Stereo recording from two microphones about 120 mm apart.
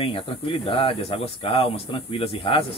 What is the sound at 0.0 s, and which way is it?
Speech, 50° left (ahead or behind).